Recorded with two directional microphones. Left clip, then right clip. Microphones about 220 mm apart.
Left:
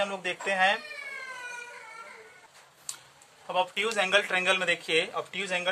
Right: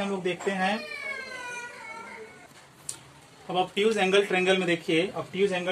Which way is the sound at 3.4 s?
30° left (ahead or behind).